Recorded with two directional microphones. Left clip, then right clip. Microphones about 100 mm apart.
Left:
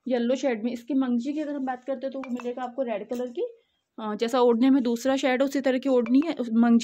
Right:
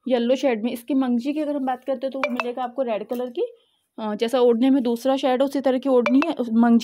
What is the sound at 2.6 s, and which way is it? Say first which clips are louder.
Speech: right 3 dB; 90° right.